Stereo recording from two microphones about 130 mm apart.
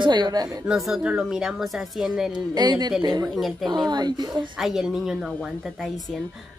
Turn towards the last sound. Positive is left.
turn(degrees=0)  # may be behind; listen again after turning